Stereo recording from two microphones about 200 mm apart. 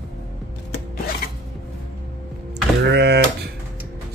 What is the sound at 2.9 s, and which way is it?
Mechanisms, 55° right (ahead or behind).